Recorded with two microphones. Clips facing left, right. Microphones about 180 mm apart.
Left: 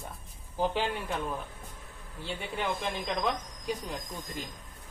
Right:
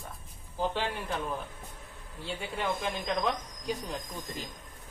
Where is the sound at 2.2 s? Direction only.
Centre (ahead or behind).